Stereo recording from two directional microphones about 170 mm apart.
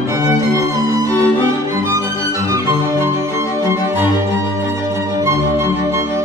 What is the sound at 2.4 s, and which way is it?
Music, 15° right (ahead or behind).